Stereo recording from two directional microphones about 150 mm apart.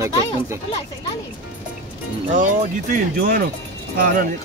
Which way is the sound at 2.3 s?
65° right (ahead or behind).